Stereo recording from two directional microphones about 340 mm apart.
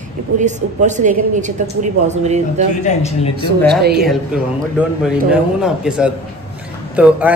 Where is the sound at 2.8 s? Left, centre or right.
Centre.